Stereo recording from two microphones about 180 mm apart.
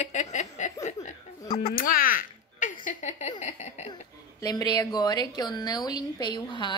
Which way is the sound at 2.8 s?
40° left (ahead or behind).